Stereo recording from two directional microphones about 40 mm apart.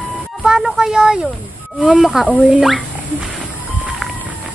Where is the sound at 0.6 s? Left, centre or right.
Centre.